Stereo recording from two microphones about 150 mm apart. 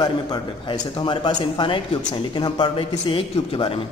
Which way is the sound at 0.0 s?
30° left (ahead or behind).